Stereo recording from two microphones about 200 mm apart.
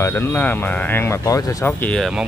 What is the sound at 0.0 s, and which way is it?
Speech, 10° left (ahead or behind).